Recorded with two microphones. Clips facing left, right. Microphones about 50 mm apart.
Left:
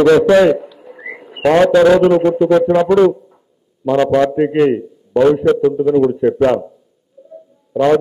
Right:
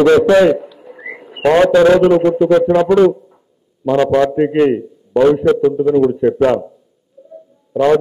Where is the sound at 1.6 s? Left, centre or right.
Right.